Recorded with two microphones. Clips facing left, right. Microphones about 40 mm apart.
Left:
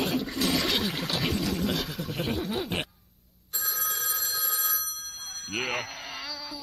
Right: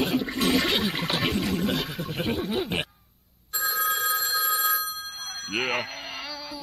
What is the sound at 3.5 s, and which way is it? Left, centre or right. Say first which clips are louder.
Telephone bell ringing: right 8 dB; right.